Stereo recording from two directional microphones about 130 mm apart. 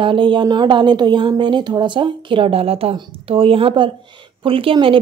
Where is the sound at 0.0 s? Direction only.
40° right (ahead or behind).